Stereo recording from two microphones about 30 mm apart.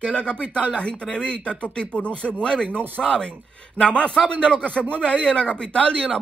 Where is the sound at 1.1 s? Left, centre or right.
Left.